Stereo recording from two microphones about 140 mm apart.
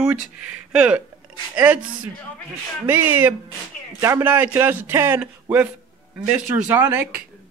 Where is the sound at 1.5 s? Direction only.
10° right (ahead or behind).